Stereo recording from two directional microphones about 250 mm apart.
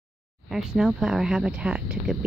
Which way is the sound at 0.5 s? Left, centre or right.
Centre.